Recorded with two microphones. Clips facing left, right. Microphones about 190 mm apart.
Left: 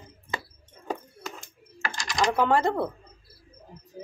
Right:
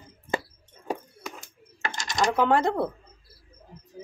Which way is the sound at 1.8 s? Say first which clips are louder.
Right 1 dB; 20° right (ahead or behind).